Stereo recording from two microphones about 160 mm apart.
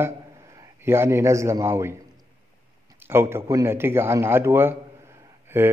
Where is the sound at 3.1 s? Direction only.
15° right (ahead or behind).